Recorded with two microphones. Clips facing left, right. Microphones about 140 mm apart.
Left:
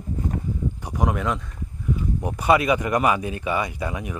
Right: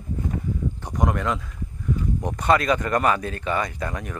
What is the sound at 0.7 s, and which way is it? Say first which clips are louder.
A man's voice: even; 10° left (ahead or behind).